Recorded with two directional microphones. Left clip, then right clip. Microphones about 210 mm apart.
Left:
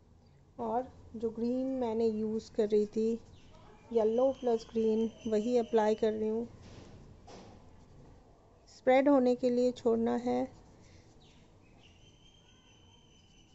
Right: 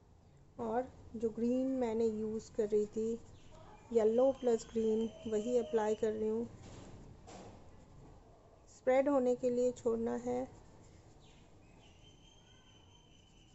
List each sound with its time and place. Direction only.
0.6 s a woman's voice: 10° left (ahead or behind); by 3.2 s 30° left (ahead or behind)
3.9 s speech: 5° left (ahead or behind); by 6.3 s 25° left (ahead or behind)
8.8 s speech: 30° left (ahead or behind)